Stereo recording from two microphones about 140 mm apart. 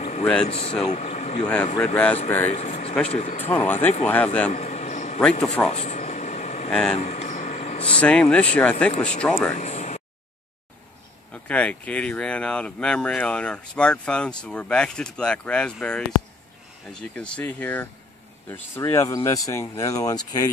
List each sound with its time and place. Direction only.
0.2 s speech: 5° left (ahead or behind)
0.5 s speech: 45° left (ahead or behind)
0.9 s speech: 55° left (ahead or behind)
1.4 s speech: 5° left (ahead or behind)
2.5 s speech: 50° left (ahead or behind)
3.6 s speech: 15° left (ahead or behind)
4.5 s a sound: 55° left (ahead or behind)
5.7 s air conditioning: 50° left (ahead or behind)
6.7 s speech: 5° left (ahead or behind)
7.0 s a sound: 55° left (ahead or behind)
7.9 s speech: 10° left (ahead or behind)
9.5 s a sound: 60° left (ahead or behind)
11.3 s speech: 10° left (ahead or behind)
17.1 s speech: 10° left (ahead or behind); by 20.4 s 25° left (ahead or behind)